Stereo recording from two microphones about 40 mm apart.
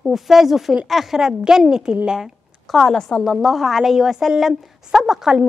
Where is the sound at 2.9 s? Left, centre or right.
Centre.